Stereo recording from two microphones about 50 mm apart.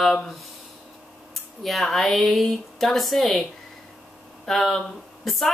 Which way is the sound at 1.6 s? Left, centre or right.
Centre.